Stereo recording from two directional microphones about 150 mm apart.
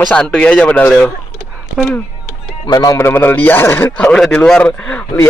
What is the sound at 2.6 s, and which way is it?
A man's voice, 25° left (ahead or behind).